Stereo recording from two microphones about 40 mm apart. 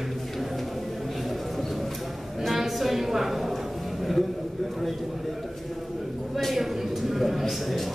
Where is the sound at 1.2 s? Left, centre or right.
Centre.